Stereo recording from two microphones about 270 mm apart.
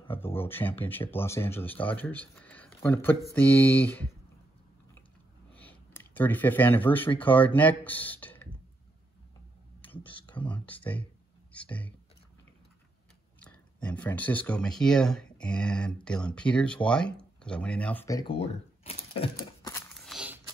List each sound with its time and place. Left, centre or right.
0.2 s speech: centre
5.5 s a sound: centre
7.2 s speech: centre
10.0 s speech: centre
10.6 s speech: centre
13.4 s speech: centre; by 19.3 s left
20.0 s a sound: centre